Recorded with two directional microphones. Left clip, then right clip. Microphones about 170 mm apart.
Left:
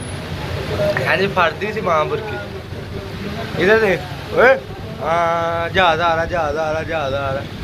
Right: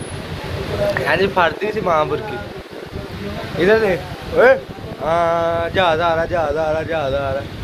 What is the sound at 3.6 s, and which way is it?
Speech, 10° right (ahead or behind).